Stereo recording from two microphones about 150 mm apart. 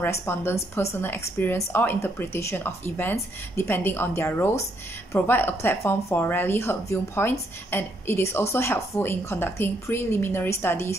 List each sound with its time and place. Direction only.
0.0 s a woman's voice: 15° left (ahead or behind)